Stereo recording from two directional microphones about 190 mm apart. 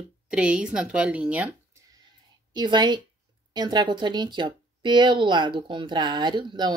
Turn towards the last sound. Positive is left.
turn(degrees=-25)  # may be behind; listen again after turning